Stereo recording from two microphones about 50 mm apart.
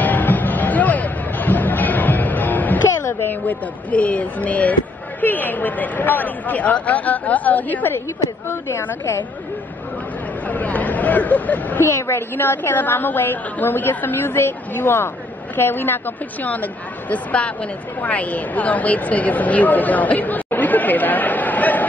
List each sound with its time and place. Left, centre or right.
0.0 s music: left
3.1 s a sound: left
3.4 s speech: left
10.5 s speech: left
11.8 s a woman's voice: left
16.4 s speech: left